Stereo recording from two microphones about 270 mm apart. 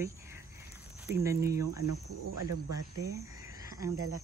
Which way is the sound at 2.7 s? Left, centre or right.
Centre.